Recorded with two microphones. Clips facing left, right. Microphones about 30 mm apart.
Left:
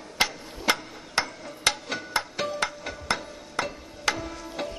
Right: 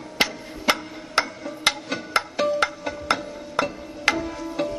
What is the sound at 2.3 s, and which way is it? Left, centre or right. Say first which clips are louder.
Music: right 7 dB; centre.